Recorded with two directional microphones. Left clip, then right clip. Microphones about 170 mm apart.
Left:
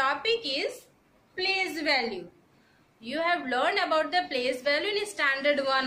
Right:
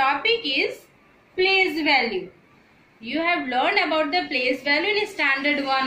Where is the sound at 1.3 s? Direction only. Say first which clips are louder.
Right 9 dB; 15° left (ahead or behind).